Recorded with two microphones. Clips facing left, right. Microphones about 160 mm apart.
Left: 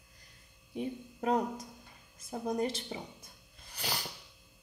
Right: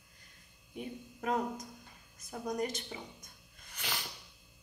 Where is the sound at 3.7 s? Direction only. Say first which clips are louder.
Left 3 dB; 35° left (ahead or behind).